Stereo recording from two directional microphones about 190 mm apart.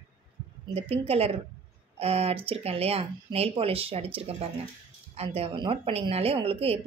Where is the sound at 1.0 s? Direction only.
30° right (ahead or behind).